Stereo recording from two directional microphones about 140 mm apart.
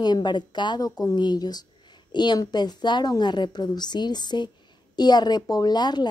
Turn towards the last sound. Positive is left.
turn(degrees=30)  # may be behind; listen again after turning